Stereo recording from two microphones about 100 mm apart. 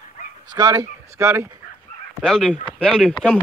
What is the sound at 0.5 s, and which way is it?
Speech, 35° right (ahead or behind).